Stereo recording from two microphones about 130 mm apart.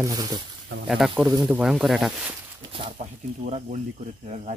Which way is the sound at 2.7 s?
45° right (ahead or behind).